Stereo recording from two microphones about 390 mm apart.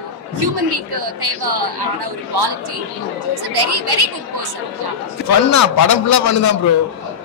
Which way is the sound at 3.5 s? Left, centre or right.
Right.